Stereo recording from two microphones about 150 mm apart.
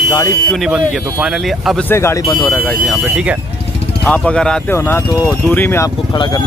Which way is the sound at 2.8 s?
Centre (ahead or behind).